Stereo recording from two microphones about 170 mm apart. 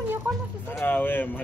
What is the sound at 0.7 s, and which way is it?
Speech, 10° left (ahead or behind).